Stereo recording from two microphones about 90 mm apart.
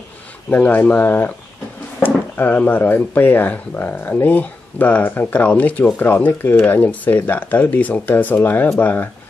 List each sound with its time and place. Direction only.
0.5 s speech: 20° left (ahead or behind)